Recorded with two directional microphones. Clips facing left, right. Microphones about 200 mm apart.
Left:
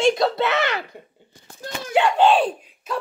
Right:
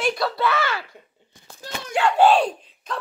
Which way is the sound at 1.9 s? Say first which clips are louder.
Left 3 dB; 20° left (ahead or behind).